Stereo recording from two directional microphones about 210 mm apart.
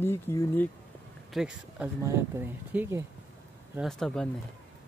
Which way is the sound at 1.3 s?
Centre (ahead or behind).